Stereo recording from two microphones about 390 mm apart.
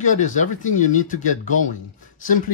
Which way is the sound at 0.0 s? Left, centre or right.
Centre.